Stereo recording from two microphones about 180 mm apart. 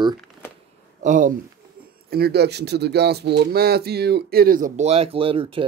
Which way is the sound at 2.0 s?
60° right (ahead or behind).